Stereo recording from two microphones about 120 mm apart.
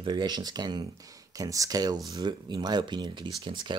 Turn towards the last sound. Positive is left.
turn(degrees=-40)  # may be behind; listen again after turning